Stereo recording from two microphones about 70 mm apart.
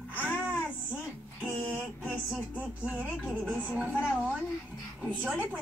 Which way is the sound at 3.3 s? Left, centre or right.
Centre.